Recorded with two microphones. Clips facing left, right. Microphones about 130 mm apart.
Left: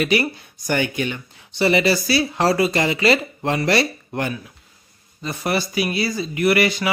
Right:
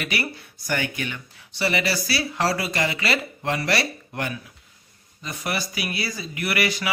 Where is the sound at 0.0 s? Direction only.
20° left (ahead or behind).